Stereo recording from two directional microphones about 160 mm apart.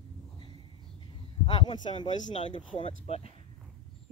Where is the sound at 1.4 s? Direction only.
30° left (ahead or behind).